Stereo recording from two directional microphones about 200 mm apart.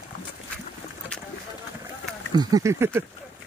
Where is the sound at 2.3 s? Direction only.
20° right (ahead or behind).